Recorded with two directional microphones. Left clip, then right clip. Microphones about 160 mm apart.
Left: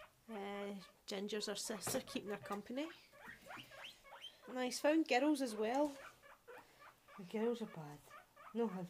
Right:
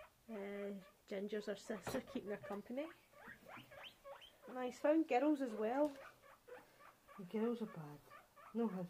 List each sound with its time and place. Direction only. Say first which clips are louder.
0.3 s speech: left 1 dB; 25° left (ahead or behind)
4.6 s speech: left 1 dB; 35° left (ahead or behind)
7.3 s speech: left 2 dB; 20° left (ahead or behind)